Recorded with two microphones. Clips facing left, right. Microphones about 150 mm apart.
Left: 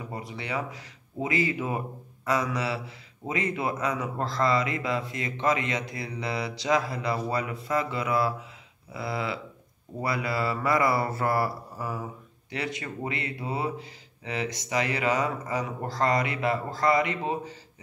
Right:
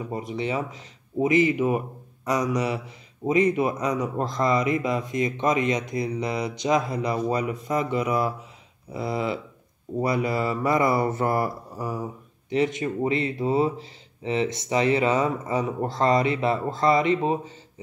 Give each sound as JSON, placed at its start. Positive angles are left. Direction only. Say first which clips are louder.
{"t": 0.1, "sound": "speech", "louder": "right 6 dB", "side_deg": -20}
{"t": 2.2, "sound": "mantra", "louder": "right 3 dB", "side_deg": -20}
{"t": 3.3, "sound": "speech", "louder": "right 8 dB", "side_deg": -20}